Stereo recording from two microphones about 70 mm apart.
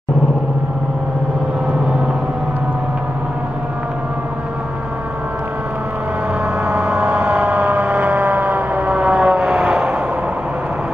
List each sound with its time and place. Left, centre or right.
6.6 s gong: right